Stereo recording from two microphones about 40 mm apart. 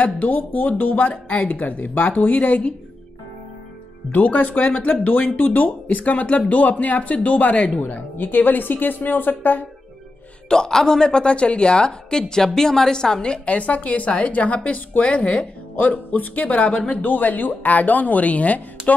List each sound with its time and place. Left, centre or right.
0.0 s a woman's voice: left
4.1 s a woman's voice: left
7.8 s speech: left
10.5 s a woman's voice: centre
13.5 s a woman's voice: left
17.0 s speech: left